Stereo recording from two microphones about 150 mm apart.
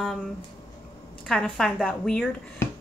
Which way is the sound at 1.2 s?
5° left (ahead or behind).